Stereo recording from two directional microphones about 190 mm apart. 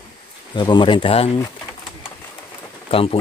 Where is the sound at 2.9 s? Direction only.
30° left (ahead or behind).